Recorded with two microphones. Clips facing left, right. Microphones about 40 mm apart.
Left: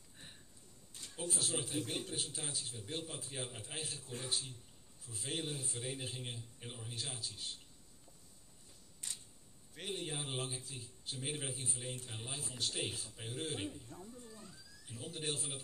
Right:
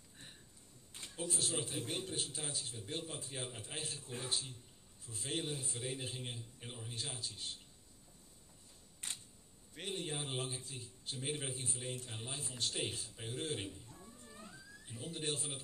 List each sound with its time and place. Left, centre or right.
1.0 s a sound: right
1.3 s a man's voice: centre
9.0 s camera: right
9.8 s a man's voice: centre
14.2 s a sound: right
14.9 s a man's voice: centre